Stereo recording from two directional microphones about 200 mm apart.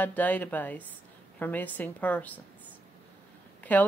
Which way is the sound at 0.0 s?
10° left (ahead or behind).